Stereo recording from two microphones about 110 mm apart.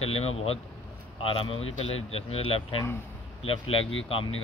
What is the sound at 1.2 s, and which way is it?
Speech, 55° left (ahead or behind).